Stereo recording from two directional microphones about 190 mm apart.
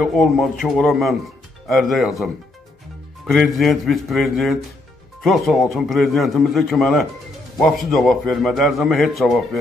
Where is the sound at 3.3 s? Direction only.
Centre (ahead or behind).